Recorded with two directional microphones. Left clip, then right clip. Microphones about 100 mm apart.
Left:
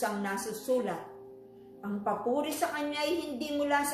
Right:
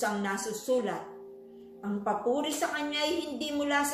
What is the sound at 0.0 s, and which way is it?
Speech, 15° right (ahead or behind).